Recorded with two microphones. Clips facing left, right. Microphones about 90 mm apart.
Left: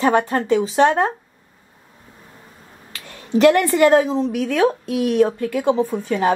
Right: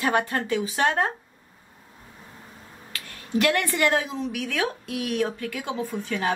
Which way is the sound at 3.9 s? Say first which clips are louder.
Left 10 dB; 40° left (ahead or behind).